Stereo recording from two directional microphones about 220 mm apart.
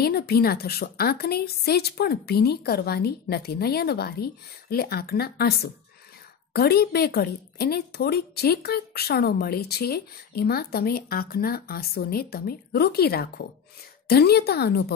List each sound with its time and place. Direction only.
0.0 s a woman's voice: 45° left (ahead or behind)